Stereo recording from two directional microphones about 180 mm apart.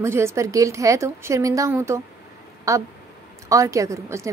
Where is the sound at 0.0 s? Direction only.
15° right (ahead or behind).